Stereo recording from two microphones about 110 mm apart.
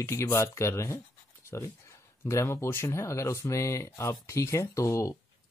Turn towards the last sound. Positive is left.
turn(degrees=25)  # may be behind; listen again after turning